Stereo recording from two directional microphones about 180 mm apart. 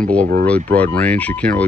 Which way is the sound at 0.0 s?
10° left (ahead or behind).